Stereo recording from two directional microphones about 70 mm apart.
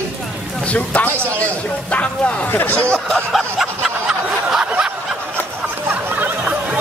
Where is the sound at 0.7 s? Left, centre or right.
Left.